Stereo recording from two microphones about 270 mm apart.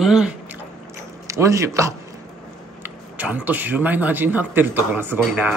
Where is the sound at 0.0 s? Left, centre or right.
Centre.